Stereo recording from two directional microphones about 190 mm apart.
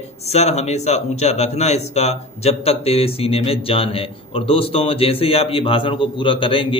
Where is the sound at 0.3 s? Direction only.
35° left (ahead or behind).